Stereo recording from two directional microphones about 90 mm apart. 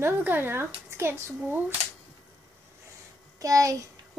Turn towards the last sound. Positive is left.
turn(degrees=-40)  # may be behind; listen again after turning